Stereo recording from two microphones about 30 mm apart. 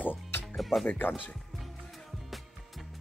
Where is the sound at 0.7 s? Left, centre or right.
Centre.